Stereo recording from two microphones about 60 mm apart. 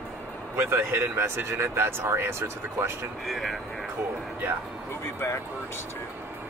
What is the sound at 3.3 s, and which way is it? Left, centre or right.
Speech, centre.